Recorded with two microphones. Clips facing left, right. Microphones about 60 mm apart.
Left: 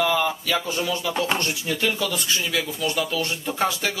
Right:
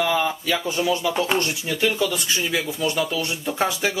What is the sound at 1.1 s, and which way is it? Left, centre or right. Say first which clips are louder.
Speech: right 2 dB; centre.